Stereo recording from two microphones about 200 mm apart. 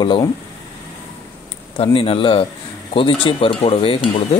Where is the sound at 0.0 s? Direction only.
20° left (ahead or behind).